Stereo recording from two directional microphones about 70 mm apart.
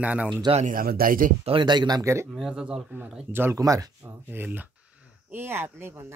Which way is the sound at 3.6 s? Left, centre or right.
Right.